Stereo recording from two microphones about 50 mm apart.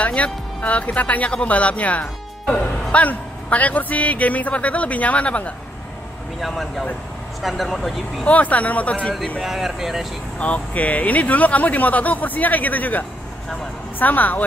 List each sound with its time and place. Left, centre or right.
0.0 s speech: left
6.4 s speech: centre
8.3 s speech: left
9.4 s speech: centre
10.4 s speech: left